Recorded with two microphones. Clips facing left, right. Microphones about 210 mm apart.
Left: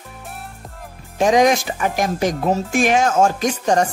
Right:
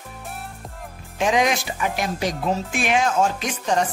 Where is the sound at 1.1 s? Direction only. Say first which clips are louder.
Left 6 dB; 40° left (ahead or behind).